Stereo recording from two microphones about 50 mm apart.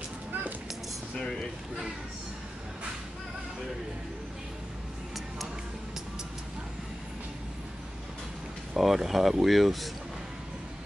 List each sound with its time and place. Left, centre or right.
0.3 s a sound: right
1.1 s speech: centre
8.7 s speech: centre